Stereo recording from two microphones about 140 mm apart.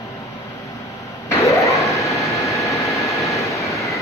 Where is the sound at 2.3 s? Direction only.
20° left (ahead or behind).